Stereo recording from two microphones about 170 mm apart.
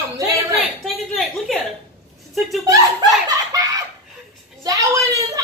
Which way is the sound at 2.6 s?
20° right (ahead or behind).